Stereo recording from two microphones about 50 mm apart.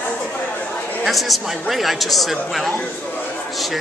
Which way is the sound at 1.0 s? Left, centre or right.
Centre.